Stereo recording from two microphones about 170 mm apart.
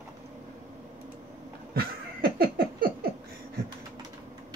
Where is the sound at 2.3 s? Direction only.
60° right (ahead or behind).